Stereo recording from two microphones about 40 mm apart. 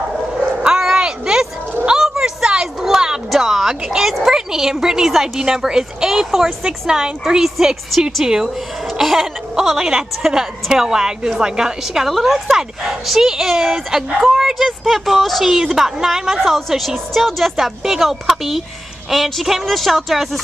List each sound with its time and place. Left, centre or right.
0.7 s a sound: centre
3.3 s a woman's voice: centre
7.4 s a woman's voice: centre
8.2 s speech: centre
9.0 s a woman's voice: centre
12.1 s speech: centre